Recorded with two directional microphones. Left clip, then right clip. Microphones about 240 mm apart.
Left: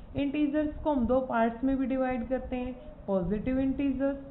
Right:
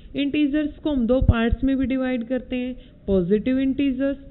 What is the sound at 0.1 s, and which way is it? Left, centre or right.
A man's voice, right.